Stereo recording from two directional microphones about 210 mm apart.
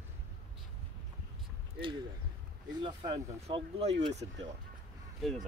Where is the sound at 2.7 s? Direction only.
20° right (ahead or behind).